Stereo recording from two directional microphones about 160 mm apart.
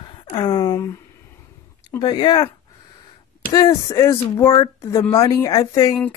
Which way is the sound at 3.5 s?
25° left (ahead or behind).